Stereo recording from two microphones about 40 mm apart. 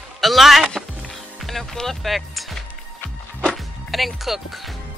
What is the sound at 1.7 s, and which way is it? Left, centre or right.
Speech, centre.